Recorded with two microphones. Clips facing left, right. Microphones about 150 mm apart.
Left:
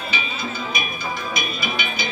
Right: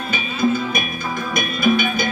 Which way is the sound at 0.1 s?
50° right (ahead or behind).